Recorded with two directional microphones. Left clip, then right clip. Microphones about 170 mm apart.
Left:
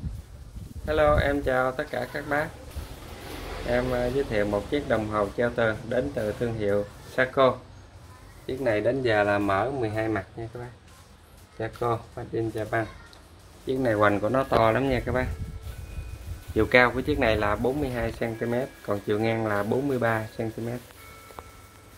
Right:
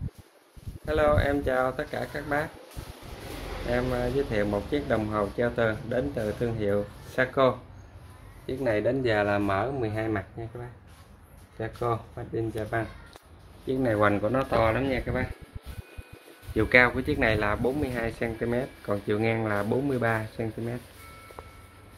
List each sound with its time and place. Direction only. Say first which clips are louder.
0.8 s speech: left 2 dB; centre (ahead or behind)
3.7 s speech: left 2 dB; centre (ahead or behind)
11.5 s speech: left 2 dB; 5° left (ahead or behind); by 15.2 s 35° left (ahead or behind)
16.5 s speech: left 1 dB; 15° left (ahead or behind)